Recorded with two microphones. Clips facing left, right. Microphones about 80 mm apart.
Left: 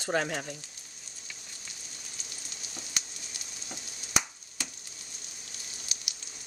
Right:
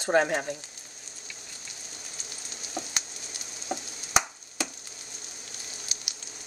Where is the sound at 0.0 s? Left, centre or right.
Right.